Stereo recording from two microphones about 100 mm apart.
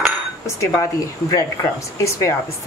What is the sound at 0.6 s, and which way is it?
Speech, 35° left (ahead or behind).